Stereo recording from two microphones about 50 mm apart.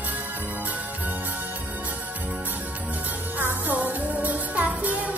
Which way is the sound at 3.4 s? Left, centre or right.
Right.